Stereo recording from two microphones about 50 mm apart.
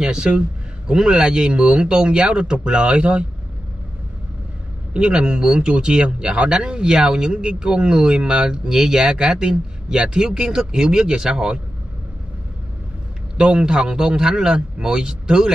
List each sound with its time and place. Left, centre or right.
0.0 s speech: centre
4.9 s speech: centre
13.4 s speech: centre